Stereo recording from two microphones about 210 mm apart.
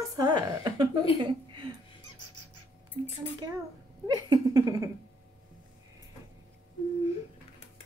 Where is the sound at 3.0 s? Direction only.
25° right (ahead or behind).